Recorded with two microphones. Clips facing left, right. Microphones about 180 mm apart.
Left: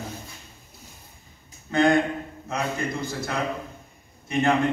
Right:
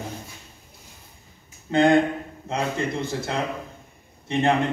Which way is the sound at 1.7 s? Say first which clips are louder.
Right 2 dB; 25° right (ahead or behind).